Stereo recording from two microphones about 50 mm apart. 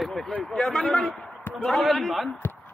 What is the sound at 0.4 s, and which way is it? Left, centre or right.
Speech, centre.